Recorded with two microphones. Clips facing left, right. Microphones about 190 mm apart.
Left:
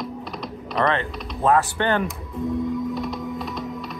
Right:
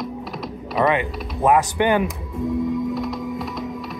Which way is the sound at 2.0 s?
Centre (ahead or behind).